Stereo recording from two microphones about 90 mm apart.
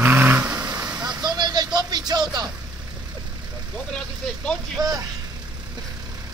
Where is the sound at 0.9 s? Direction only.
50° right (ahead or behind).